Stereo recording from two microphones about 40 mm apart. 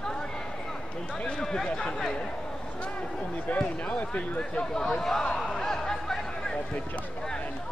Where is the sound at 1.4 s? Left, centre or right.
Centre.